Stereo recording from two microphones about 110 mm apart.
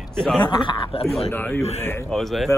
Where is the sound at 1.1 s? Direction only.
Centre (ahead or behind).